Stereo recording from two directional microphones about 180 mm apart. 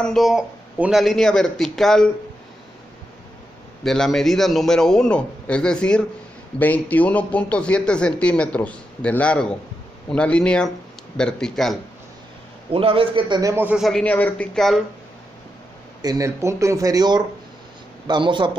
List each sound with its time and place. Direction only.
0.0 s a man's voice: centre (ahead or behind)
3.8 s a man's voice: centre (ahead or behind)
12.7 s a man's voice: 30° right (ahead or behind); by 14.8 s 5° left (ahead or behind)
16.0 s speech: 20° right (ahead or behind)